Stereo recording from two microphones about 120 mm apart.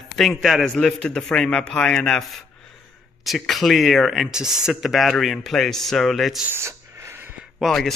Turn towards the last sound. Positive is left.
turn(degrees=0)  # may be behind; listen again after turning